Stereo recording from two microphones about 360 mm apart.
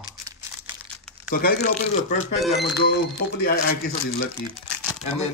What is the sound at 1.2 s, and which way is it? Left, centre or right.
Speech, left.